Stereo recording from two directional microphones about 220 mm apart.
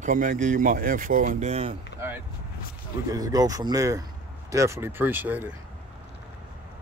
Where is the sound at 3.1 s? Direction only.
15° right (ahead or behind).